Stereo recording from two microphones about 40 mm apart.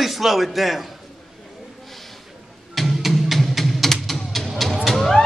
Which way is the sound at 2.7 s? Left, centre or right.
Centre.